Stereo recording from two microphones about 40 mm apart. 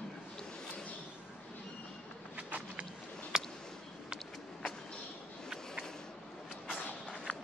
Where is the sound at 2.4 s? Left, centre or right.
Right.